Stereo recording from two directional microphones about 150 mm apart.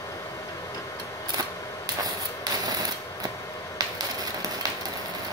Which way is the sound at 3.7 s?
25° right (ahead or behind).